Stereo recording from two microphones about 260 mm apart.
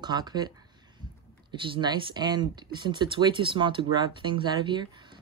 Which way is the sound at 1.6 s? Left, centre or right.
Centre.